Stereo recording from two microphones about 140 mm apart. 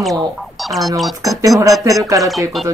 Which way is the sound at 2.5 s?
Centre (ahead or behind).